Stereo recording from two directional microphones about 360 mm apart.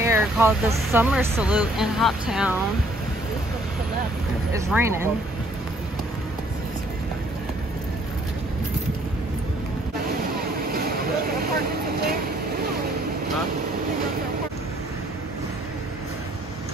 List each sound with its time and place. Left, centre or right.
0.0 s speech: centre
4.6 s speech: centre
10.7 s vehicle: right